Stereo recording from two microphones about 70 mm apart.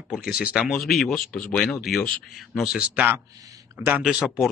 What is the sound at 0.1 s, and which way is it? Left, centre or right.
Speech, centre.